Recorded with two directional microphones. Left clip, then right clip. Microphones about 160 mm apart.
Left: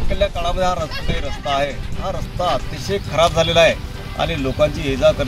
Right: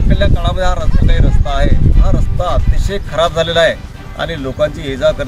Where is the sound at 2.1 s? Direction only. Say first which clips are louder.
Right 1 dB; 10° right (ahead or behind).